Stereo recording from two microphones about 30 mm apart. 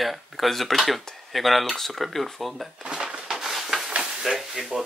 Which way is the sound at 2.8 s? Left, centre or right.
Right.